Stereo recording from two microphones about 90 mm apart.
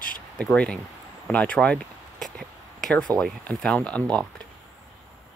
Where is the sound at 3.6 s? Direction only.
10° left (ahead or behind).